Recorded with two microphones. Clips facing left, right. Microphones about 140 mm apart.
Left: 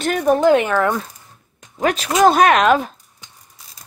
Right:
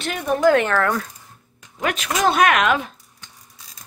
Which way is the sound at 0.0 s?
45° left (ahead or behind).